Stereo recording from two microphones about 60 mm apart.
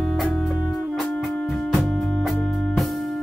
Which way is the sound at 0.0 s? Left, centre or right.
Centre.